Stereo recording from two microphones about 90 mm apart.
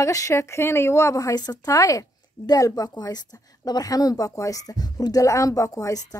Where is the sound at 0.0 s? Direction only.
35° left (ahead or behind).